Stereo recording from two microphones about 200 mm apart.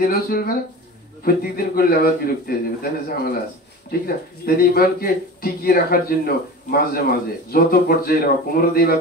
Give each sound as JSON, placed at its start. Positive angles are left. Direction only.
{"t": 0.0, "sound": "speech", "side_deg": 50}